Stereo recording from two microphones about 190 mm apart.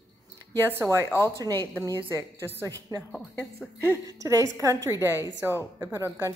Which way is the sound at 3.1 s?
10° left (ahead or behind).